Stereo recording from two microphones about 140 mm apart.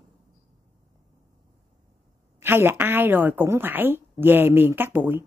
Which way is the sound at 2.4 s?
15° right (ahead or behind).